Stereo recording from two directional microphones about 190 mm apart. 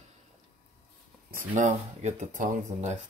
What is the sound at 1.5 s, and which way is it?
Speech, 40° right (ahead or behind).